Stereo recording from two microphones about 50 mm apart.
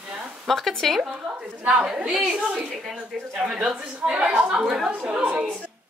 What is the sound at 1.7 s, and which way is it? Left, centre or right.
Speech, centre.